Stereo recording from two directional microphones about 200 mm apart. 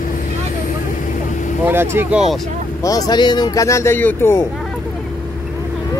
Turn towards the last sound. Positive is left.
turn(degrees=10)  # may be behind; listen again after turning